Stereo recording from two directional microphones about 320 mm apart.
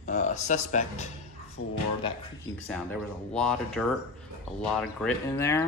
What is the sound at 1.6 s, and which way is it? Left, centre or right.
Speech, left.